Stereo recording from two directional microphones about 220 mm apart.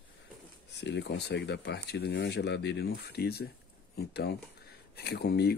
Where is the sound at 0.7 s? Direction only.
50° left (ahead or behind).